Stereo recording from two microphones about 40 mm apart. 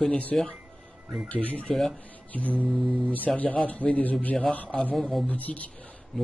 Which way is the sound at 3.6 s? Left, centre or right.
Left.